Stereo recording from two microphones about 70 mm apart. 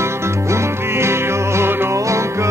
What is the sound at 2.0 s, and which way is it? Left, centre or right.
Music, right.